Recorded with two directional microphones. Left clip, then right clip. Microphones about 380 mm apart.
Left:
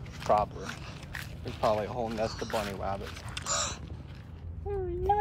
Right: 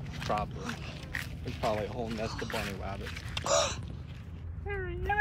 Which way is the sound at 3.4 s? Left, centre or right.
Centre.